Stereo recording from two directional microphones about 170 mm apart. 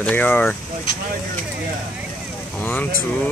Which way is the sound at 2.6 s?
10° left (ahead or behind).